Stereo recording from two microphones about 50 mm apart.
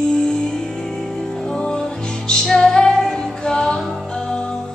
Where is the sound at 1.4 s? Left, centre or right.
Centre.